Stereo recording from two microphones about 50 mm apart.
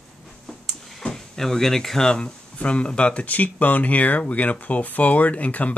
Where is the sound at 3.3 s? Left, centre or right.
Left.